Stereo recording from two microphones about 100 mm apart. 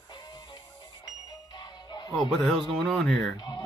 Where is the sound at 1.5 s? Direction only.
45° left (ahead or behind).